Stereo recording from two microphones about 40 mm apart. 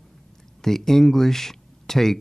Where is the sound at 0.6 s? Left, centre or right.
Centre.